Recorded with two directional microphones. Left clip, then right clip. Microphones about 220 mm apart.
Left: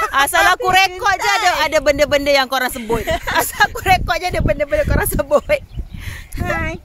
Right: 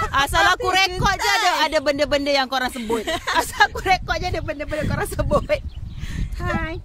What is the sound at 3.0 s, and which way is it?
Speech, 15° right (ahead or behind).